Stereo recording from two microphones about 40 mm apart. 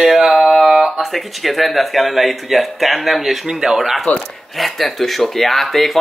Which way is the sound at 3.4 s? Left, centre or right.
Centre.